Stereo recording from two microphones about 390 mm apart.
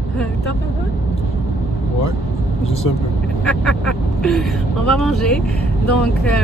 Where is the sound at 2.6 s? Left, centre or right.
Centre.